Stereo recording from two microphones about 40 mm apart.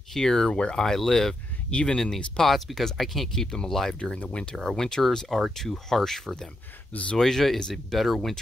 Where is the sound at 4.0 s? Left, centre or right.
Left.